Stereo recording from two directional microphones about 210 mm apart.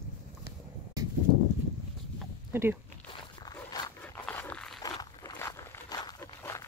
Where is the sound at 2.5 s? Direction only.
10° right (ahead or behind).